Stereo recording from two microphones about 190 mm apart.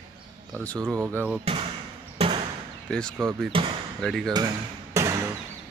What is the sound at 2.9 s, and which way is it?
Speech, 5° left (ahead or behind).